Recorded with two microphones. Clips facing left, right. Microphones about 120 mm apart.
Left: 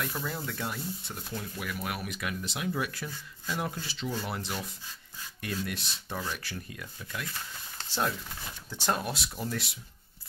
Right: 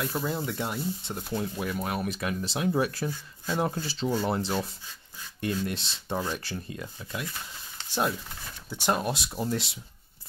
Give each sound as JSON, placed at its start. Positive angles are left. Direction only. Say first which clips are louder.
{"t": 0.0, "sound": "speech", "louder": "right 5 dB", "side_deg": -20}
{"t": 8.6, "sound": "speech", "louder": "right 4 dB", "side_deg": -15}